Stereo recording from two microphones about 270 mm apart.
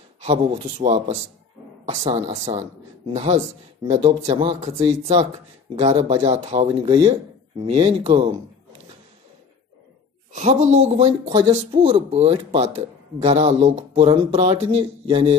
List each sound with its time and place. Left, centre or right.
0.2 s speech: right
10.3 s speech: right